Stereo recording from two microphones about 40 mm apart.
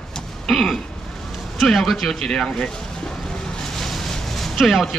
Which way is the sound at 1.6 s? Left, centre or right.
Centre.